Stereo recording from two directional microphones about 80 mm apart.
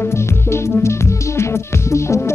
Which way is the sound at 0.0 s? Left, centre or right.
Left.